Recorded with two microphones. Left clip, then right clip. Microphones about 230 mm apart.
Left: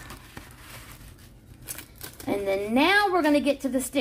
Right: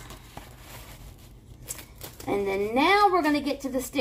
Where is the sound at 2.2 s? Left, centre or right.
Left.